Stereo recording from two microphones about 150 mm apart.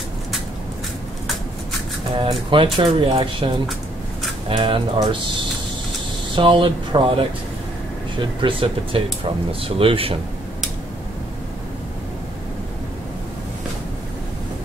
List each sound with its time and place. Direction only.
2.1 s speech: 35° right (ahead or behind)
4.5 s speech: 35° right (ahead or behind)
6.3 s speech: 35° right (ahead or behind)